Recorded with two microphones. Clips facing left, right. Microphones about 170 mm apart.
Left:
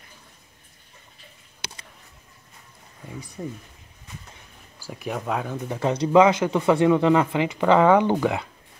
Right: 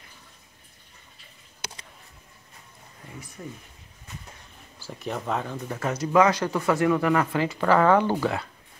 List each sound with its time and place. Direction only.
3.4 s speech: 25° left (ahead or behind)
4.8 s speech: 5° left (ahead or behind)
5.8 s speech: 30° left (ahead or behind)
6.2 s speech: 20° left (ahead or behind)